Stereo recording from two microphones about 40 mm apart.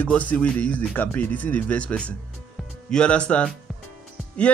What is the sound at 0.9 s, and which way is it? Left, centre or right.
Speech, left.